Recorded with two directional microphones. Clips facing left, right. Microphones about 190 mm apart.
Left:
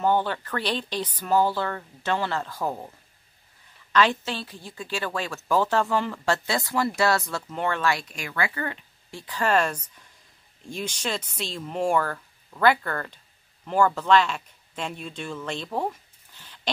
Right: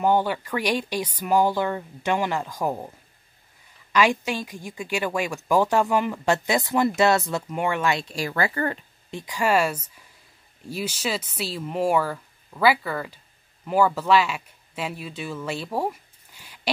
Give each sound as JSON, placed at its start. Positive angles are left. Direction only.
{"t": 0.0, "sound": "a woman's voice", "side_deg": -10}
{"t": 3.9, "sound": "a woman's voice", "side_deg": -10}
{"t": 9.1, "sound": "a woman's voice", "side_deg": -10}